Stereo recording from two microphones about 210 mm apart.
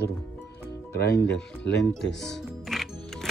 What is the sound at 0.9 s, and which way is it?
Speech, 50° left (ahead or behind).